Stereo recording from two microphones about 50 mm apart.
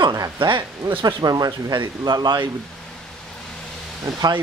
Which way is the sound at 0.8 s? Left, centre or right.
Right.